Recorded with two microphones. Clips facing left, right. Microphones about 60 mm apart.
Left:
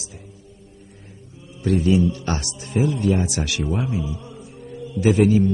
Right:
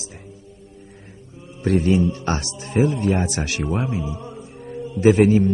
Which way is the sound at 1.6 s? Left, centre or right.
Right.